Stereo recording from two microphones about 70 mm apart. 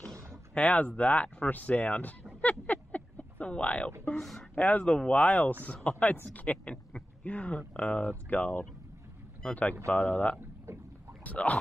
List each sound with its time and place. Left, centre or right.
0.6 s speech: left
2.6 s a sound: left
4.2 s speech: centre
4.6 s speech: centre
10.7 s boat: right
11.2 s speech: left